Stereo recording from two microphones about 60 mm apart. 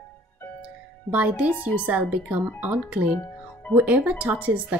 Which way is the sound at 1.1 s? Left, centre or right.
Right.